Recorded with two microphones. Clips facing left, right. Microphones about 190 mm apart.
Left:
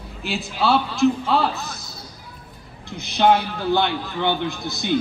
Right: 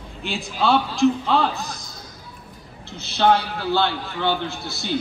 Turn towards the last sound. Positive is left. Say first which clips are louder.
# left 3 dB
turn(degrees=15)  # may be behind; listen again after turning